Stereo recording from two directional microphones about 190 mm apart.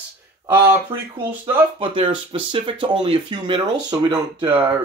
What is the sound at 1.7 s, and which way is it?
Speech, 30° right (ahead or behind).